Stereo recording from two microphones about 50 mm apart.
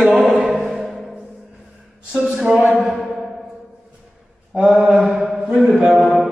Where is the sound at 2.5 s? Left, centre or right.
Right.